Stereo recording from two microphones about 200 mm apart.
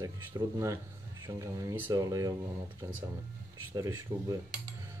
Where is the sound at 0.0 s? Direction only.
15° right (ahead or behind).